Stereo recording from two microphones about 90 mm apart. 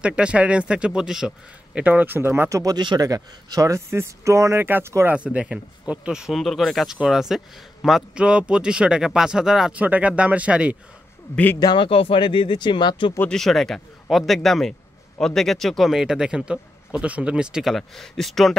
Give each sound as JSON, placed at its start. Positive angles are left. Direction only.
{"t": 0.0, "sound": "speech", "side_deg": -10}
{"t": 1.8, "sound": "speech", "side_deg": -20}
{"t": 2.5, "sound": "speech", "side_deg": -40}
{"t": 6.3, "sound": "speech", "side_deg": 0}
{"t": 9.8, "sound": "speech", "side_deg": -15}
{"t": 11.3, "sound": "speech", "side_deg": 30}
{"t": 11.6, "sound": "speech", "side_deg": 65}
{"t": 13.3, "sound": "a man's voice", "side_deg": 5}
{"t": 17.7, "sound": "a man's voice", "side_deg": 5}